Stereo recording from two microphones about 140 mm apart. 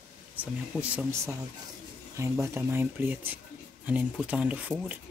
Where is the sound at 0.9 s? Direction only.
15° right (ahead or behind).